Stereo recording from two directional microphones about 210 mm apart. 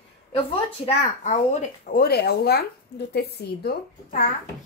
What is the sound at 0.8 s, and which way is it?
A woman's voice, 35° left (ahead or behind).